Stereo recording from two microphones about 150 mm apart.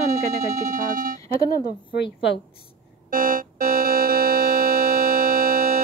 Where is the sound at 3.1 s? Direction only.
65° right (ahead or behind).